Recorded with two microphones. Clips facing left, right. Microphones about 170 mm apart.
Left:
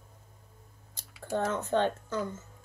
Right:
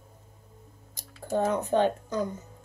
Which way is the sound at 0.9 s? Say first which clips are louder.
Right 4 dB; 15° right (ahead or behind).